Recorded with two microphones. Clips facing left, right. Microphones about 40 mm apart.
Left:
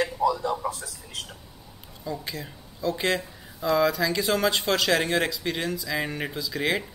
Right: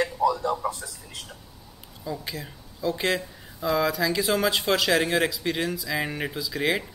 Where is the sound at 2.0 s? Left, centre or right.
Centre.